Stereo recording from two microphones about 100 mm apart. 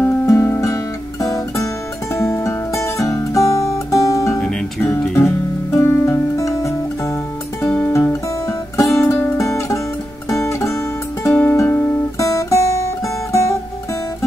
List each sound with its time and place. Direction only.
0.0 s music: 25° left (ahead or behind)
4.4 s music: 5° left (ahead or behind)
4.8 s music: 20° left (ahead or behind)
7.6 s music: 20° left (ahead or behind)
7.9 s music: 30° left (ahead or behind)
9.4 s music: 30° left (ahead or behind)